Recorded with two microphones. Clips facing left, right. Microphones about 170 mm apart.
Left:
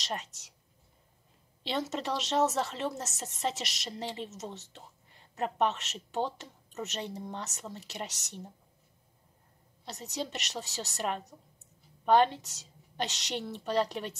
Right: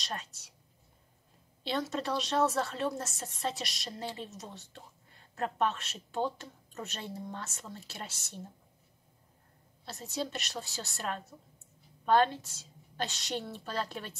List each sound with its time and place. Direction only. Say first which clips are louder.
0.0 s a woman's voice: left 3 dB; 20° left (ahead or behind)
1.7 s a woman's voice: even; 20° left (ahead or behind)
9.8 s a woman's voice: even; 20° left (ahead or behind)